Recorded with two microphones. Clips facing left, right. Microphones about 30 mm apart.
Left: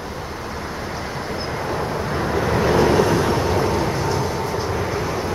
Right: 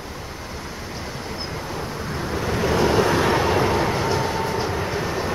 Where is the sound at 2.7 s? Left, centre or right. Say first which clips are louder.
Left 2 dB; centre.